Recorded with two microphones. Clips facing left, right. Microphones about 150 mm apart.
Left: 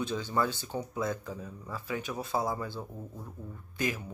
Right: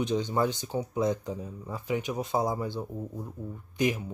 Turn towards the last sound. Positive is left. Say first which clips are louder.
# right 6 dB
turn(degrees=-15)  # may be behind; listen again after turning